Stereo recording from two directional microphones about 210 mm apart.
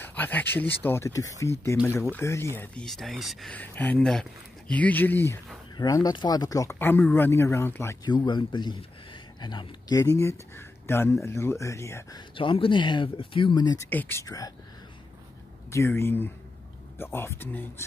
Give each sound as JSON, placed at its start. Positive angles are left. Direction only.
{"t": 0.0, "sound": "speech", "side_deg": 10}
{"t": 12.4, "sound": "speech", "side_deg": 25}
{"t": 15.7, "sound": "speech", "side_deg": 10}